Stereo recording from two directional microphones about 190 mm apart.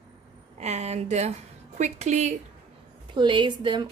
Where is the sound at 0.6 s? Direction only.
35° right (ahead or behind).